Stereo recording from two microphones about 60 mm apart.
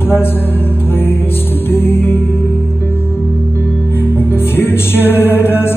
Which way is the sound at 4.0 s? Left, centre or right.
Left.